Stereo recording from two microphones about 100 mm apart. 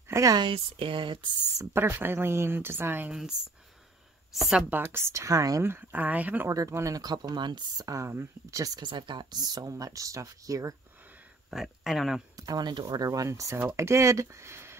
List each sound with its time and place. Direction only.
0.1 s speech: 35° right (ahead or behind)
0.4 s speech: 60° right (ahead or behind)
1.6 s speech: 25° right (ahead or behind)
3.1 s speech: 5° right (ahead or behind)
4.4 s speech: 5° right (ahead or behind)
4.7 s speech: 20° right (ahead or behind)
5.7 s speech: 20° right (ahead or behind)
6.5 s speech: 35° right (ahead or behind)
8.7 s speech: 50° right (ahead or behind); by 10.8 s 35° right (ahead or behind)
11.5 s speech: centre (ahead or behind)
12.4 s speech: 40° right (ahead or behind)